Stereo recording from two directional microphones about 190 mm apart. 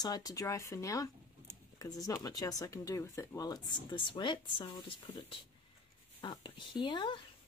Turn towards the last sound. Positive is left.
turn(degrees=25)  # may be behind; listen again after turning